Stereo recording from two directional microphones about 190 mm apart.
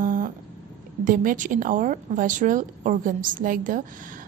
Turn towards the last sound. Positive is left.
turn(degrees=-45)  # may be behind; listen again after turning